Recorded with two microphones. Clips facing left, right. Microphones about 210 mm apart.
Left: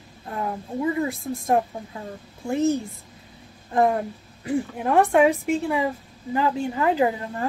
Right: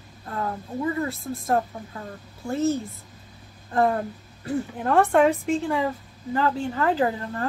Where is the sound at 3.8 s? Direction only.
15° left (ahead or behind).